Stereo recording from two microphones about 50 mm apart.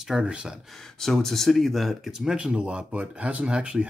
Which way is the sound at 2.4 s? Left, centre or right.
Right.